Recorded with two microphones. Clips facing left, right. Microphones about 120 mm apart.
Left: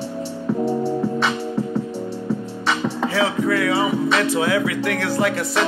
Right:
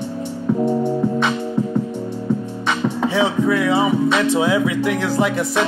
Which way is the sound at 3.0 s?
15° right (ahead or behind).